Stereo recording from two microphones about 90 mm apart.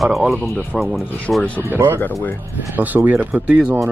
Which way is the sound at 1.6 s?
25° right (ahead or behind).